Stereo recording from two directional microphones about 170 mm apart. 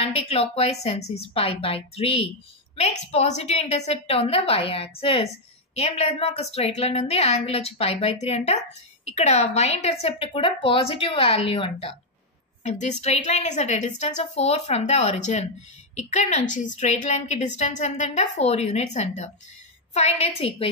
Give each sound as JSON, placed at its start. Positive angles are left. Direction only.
{"t": 0.0, "sound": "speech", "side_deg": 35}
{"t": 12.6, "sound": "a woman's voice", "side_deg": 45}